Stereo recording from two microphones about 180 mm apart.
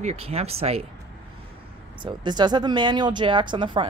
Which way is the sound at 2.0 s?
25° right (ahead or behind).